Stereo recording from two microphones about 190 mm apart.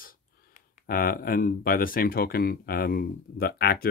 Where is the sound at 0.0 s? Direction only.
45° left (ahead or behind).